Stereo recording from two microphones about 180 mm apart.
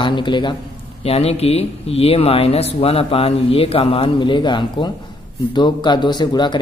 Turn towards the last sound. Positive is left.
turn(degrees=25)  # may be behind; listen again after turning